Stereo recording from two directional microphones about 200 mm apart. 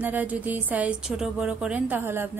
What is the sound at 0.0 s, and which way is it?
Speech, 10° right (ahead or behind).